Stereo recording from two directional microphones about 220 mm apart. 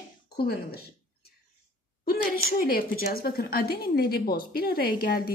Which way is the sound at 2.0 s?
40° left (ahead or behind).